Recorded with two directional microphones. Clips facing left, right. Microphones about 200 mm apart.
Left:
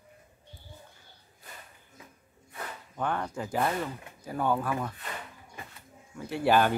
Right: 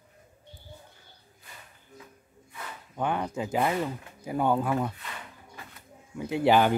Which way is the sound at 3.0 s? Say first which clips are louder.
Right 3 dB; 15° right (ahead or behind).